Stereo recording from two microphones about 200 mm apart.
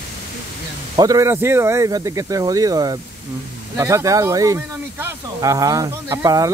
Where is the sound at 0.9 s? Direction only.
15° right (ahead or behind).